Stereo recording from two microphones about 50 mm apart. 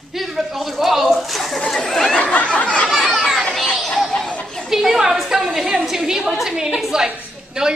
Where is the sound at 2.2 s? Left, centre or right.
Left.